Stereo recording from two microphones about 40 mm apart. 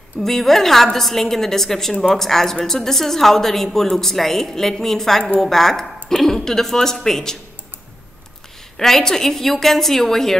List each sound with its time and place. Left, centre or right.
0.2 s a woman's voice: centre
8.7 s a woman's voice: centre